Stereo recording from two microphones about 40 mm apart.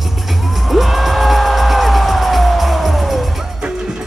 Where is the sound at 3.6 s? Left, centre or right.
Centre.